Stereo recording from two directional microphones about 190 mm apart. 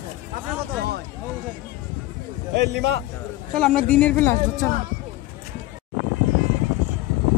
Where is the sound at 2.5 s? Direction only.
60° right (ahead or behind).